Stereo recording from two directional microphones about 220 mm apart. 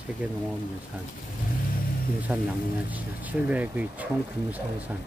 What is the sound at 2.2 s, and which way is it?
Speech, 5° right (ahead or behind).